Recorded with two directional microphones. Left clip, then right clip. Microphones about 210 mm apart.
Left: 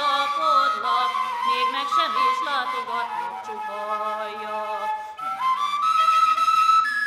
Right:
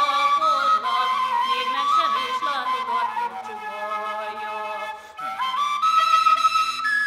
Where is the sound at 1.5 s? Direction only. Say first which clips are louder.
Right 1 dB; 15° left (ahead or behind).